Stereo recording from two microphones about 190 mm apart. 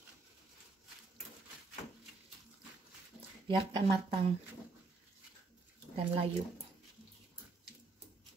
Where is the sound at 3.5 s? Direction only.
25° right (ahead or behind).